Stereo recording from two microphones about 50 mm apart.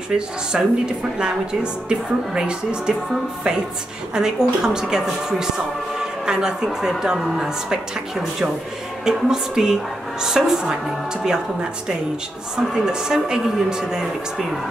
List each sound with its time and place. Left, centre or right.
0.1 s a woman's voice: centre
4.1 s a woman's voice: centre
9.0 s a woman's voice: centre
12.5 s a woman's voice: centre